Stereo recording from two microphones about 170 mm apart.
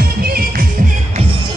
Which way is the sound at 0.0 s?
65° right (ahead or behind).